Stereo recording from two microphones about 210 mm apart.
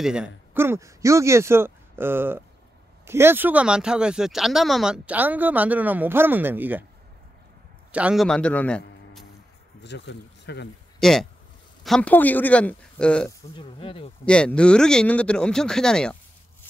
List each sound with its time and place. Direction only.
0.0 s speech: 5° right (ahead or behind)
7.9 s a man's voice: 5° right (ahead or behind)
9.8 s speech: 55° left (ahead or behind)
11.0 s speech: centre (ahead or behind)
13.6 s speech: 25° left (ahead or behind)
14.2 s speech: 5° left (ahead or behind)